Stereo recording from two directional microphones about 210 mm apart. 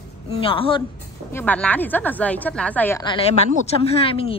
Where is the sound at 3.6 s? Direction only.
25° left (ahead or behind).